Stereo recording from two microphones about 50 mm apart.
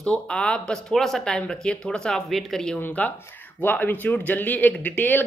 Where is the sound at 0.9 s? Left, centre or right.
Centre.